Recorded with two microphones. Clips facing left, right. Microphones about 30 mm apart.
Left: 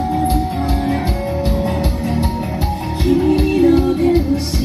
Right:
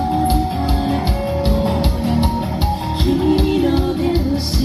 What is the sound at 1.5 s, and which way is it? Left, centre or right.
Music, right.